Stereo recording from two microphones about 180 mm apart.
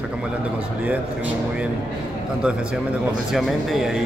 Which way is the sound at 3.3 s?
Centre (ahead or behind).